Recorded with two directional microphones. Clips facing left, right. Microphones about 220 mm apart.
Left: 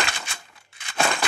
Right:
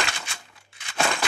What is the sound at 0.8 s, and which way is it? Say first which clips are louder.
Crushing: left 1 dB; 55° left (ahead or behind).